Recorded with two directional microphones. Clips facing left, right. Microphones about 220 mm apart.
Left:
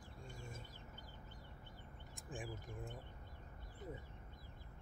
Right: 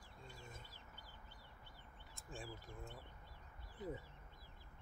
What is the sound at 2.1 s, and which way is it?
Speech, 15° left (ahead or behind).